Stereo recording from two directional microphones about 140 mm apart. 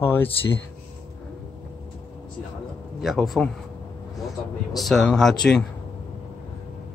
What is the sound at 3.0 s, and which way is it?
Speech, centre (ahead or behind).